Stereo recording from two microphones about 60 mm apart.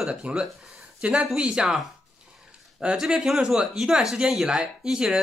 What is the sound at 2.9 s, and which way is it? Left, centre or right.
Speech, centre.